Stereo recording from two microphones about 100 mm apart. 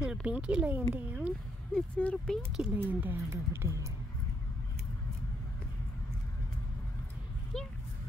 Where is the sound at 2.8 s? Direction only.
20° right (ahead or behind).